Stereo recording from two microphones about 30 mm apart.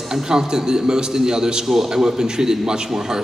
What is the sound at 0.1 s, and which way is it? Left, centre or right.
A man's voice, centre.